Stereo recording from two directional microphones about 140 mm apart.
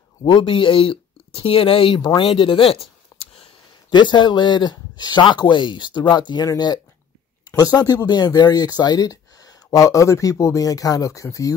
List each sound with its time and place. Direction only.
0.2 s speech: 35° left (ahead or behind)
2.1 s a sound: 40° left (ahead or behind)
3.9 s speech: 35° left (ahead or behind)